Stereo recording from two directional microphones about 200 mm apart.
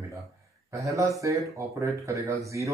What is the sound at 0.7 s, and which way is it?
Speech, 15° right (ahead or behind).